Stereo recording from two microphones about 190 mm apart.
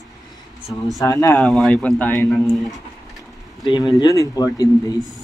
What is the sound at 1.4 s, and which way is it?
Speech, centre (ahead or behind).